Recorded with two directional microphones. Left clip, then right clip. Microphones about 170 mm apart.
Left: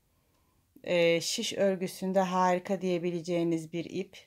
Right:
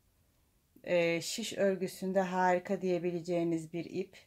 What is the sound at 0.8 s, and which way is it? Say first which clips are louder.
Speech: left 4 dB; 45° left (ahead or behind).